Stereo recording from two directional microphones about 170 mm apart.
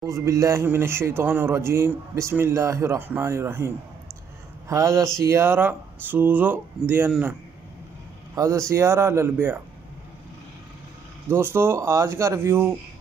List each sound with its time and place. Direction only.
0.0 s speech: 20° right (ahead or behind)
8.4 s speech: 15° right (ahead or behind)
11.2 s speech: 15° right (ahead or behind)